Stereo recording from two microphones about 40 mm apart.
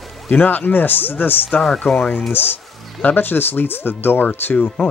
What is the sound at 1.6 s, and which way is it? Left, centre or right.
Speech, centre.